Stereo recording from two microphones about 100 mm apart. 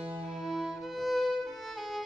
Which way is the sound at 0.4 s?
Centre (ahead or behind).